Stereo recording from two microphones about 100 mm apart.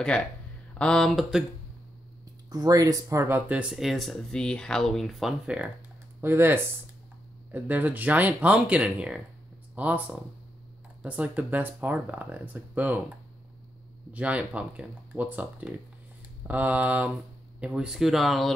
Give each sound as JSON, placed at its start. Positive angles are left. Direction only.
{"t": 0.7, "sound": "speech", "side_deg": 10}
{"t": 2.5, "sound": "speech", "side_deg": -40}
{"t": 5.5, "sound": "speech", "side_deg": -10}
{"t": 6.2, "sound": "speech", "side_deg": -25}
{"t": 14.1, "sound": "speech", "side_deg": -15}